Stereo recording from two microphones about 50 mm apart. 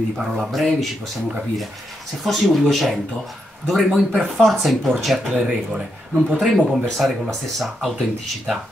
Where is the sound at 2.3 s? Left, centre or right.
Centre.